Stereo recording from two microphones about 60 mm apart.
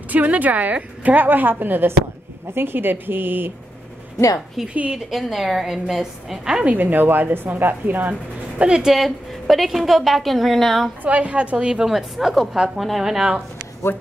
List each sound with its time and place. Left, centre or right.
0.1 s a woman's voice: right
4.6 s a woman's voice: centre
6.6 s speech: right; by 10.9 s centre
11.1 s a woman's voice: right
11.5 s speech: centre